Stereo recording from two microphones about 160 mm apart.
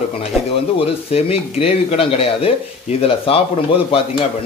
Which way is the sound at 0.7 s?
40° left (ahead or behind).